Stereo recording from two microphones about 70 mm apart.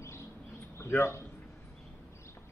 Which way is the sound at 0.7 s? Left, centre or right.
Left.